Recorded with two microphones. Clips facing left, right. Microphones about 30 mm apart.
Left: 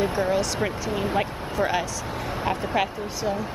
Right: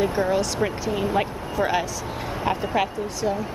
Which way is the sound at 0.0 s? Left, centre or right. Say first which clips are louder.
Right 1 dB; centre.